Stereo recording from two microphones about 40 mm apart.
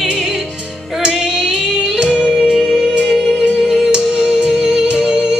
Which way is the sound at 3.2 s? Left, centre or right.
Left.